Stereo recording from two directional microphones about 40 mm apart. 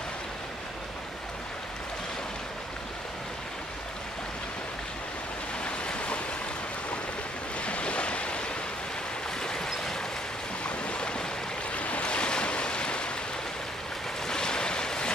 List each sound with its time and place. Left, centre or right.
5.6 s waves: left
7.6 s waves: left
9.4 s vehicle: centre
10.6 s boat: left
11.7 s waves: left
14.2 s waves: centre